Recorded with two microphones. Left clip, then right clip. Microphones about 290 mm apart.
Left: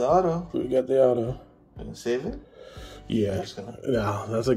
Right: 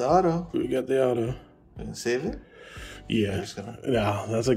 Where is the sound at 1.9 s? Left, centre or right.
Right.